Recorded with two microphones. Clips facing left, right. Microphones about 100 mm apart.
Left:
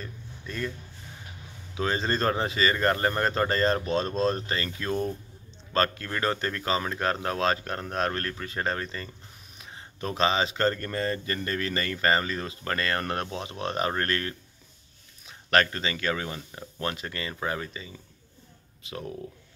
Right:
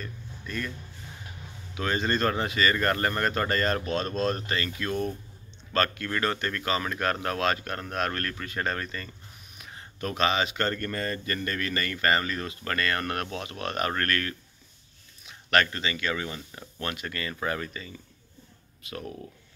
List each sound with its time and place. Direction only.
0.0 s speech: 25° left (ahead or behind)
1.8 s speech: 30° left (ahead or behind)